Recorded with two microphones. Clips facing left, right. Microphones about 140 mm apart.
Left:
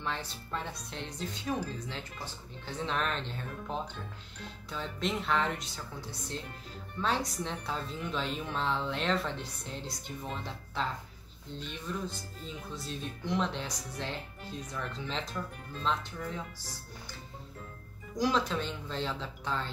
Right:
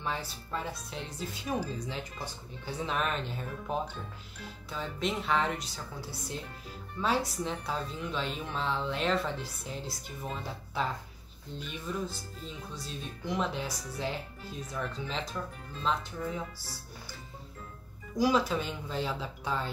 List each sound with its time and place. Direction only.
0.0 s a woman's voice: 10° right (ahead or behind)
18.1 s speech: 10° right (ahead or behind)